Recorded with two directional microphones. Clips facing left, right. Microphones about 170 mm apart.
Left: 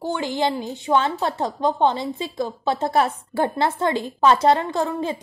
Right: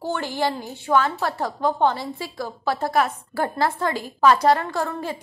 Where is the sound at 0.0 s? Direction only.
15° left (ahead or behind).